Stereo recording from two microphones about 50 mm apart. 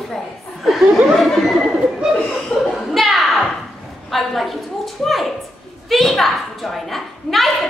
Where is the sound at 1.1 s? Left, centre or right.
Centre.